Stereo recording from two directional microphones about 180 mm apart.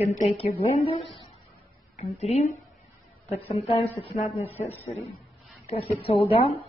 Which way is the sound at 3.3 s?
35° left (ahead or behind).